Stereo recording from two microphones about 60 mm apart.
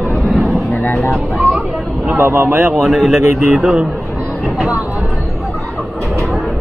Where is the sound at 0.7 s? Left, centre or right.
Left.